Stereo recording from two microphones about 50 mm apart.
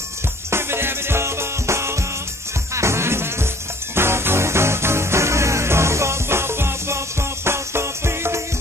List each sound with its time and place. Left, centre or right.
0.5 s music: right